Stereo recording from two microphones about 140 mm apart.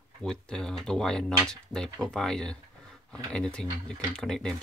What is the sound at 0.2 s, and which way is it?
Speech, 5° left (ahead or behind).